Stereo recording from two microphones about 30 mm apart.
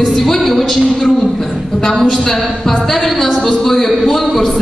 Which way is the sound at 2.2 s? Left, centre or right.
Centre.